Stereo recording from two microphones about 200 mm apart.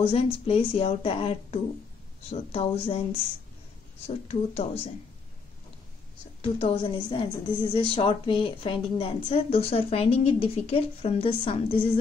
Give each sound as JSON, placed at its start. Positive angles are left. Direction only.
{"t": 0.0, "sound": "speech", "side_deg": 30}
{"t": 6.4, "sound": "speech", "side_deg": 30}